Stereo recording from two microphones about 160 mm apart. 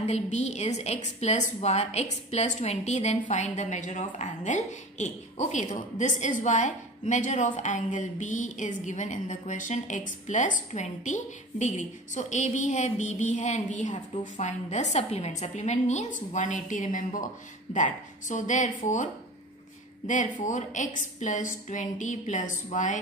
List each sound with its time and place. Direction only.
0.0 s a woman's voice: 45° left (ahead or behind)
20.1 s a woman's voice: 50° left (ahead or behind)